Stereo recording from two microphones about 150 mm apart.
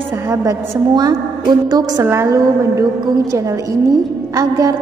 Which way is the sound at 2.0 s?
15° right (ahead or behind).